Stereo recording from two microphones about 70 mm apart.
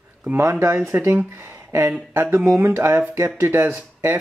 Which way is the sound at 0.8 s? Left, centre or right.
Right.